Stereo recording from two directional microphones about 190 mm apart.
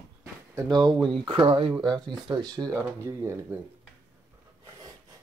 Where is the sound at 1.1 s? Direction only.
25° right (ahead or behind).